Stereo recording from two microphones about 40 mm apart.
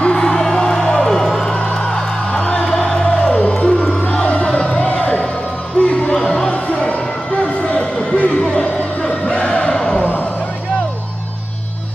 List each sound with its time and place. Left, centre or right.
0.1 s music: centre
1.5 s music: left
6.2 s music: centre
6.5 s music: left
7.6 s a sound: left
9.3 s a sound: left